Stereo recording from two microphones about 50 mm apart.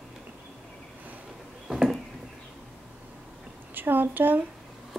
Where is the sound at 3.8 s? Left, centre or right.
Right.